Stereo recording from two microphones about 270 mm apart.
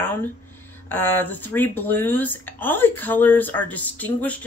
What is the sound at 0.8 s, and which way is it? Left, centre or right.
Speech, centre.